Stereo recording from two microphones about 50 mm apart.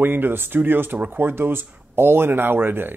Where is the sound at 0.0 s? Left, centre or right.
Right.